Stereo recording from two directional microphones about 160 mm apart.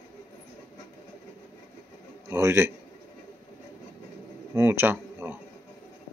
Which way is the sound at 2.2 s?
15° right (ahead or behind).